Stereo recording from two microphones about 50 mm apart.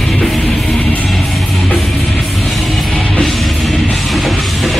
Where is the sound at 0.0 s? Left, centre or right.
Centre.